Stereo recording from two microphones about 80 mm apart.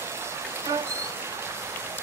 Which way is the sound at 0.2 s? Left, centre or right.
Right.